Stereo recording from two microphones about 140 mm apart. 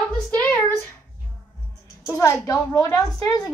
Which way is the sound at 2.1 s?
20° left (ahead or behind).